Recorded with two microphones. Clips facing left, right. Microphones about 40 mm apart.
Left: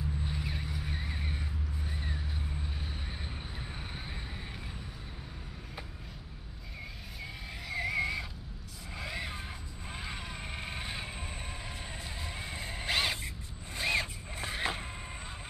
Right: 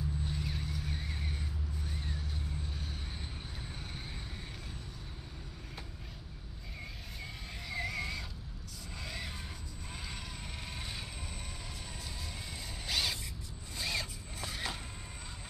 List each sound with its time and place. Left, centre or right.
0.2 s vehicle: centre
7.6 s music: centre
8.9 s a sound: centre
12.2 s music: left
13.7 s zipper: left